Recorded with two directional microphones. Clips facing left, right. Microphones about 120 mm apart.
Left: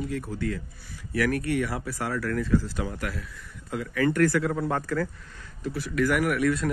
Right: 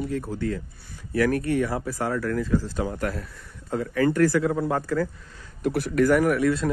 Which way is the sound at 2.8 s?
35° right (ahead or behind).